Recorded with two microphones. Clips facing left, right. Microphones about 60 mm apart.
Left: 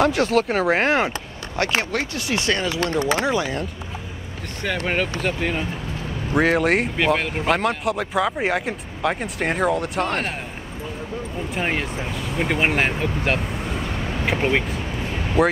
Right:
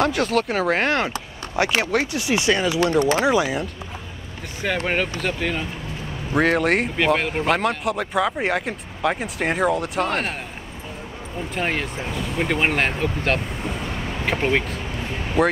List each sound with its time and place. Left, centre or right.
0.0 s speech: centre
1.8 s speech: centre
4.6 s speech: centre
5.4 s speech: centre
11.5 s speech: centre